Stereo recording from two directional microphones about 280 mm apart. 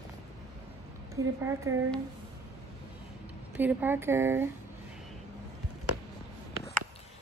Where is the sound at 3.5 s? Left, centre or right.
Centre.